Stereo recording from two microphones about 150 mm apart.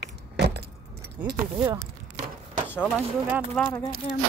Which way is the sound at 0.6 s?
90° right.